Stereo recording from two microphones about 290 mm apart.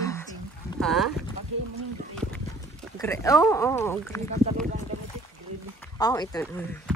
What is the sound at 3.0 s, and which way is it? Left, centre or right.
Speech, centre.